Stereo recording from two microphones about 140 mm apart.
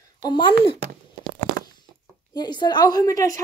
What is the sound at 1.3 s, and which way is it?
Tearing, 90° right.